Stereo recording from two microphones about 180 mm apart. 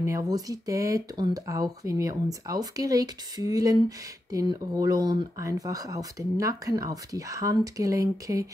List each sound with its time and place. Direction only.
0.0 s speech: 15° right (ahead or behind)